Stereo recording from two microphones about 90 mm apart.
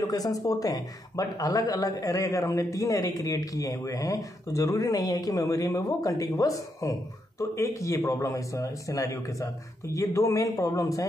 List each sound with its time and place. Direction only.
0.0 s speech: 45° left (ahead or behind)